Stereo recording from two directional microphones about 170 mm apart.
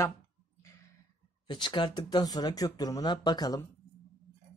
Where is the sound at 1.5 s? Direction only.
25° left (ahead or behind).